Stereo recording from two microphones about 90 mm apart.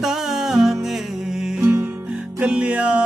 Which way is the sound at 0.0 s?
5° right (ahead or behind).